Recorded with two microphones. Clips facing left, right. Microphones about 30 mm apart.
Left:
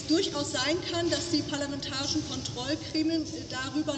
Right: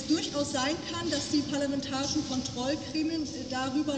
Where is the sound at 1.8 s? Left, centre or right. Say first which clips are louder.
Right 1 dB; left.